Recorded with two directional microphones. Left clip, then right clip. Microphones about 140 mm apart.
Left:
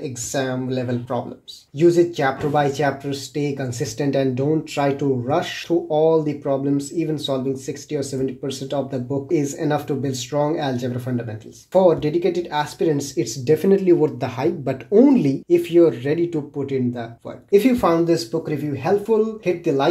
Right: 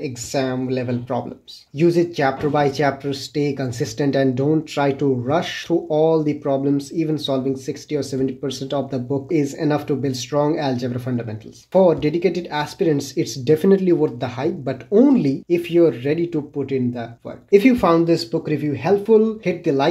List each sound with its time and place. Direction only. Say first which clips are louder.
0.3 s speech: right 2 dB; 50° right (ahead or behind); by 14.3 s 20° right (ahead or behind)
14.4 s speech: left 2 dB; 5° right (ahead or behind)
15.4 s speech: left 2 dB; 35° right (ahead or behind)
17.5 s speech: right 2 dB; 50° right (ahead or behind)